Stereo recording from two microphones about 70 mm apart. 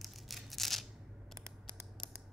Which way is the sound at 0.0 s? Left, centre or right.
Centre.